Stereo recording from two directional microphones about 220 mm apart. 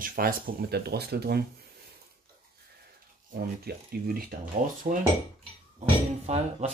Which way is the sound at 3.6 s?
45° right (ahead or behind).